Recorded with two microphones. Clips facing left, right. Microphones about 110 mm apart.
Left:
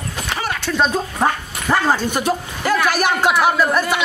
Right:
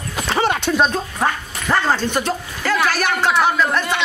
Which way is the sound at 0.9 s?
10° left (ahead or behind).